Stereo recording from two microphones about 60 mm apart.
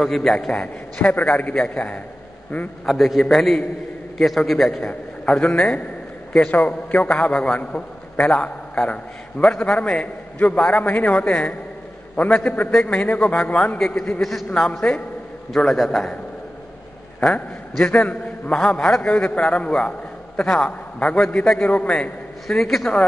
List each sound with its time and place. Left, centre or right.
0.0 s a man's voice: centre
0.5 s a man's voice: left
2.9 s a man's voice: centre
4.8 s a man's voice: centre
6.9 s a man's voice: left
13.7 s a man's voice: centre
14.7 s a man's voice: left
15.5 s a man's voice: centre
17.2 s a man's voice: centre
18.5 s a man's voice: centre
22.6 s a man's voice: centre